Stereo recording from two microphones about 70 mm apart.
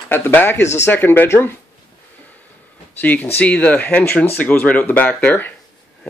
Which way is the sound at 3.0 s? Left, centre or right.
Left.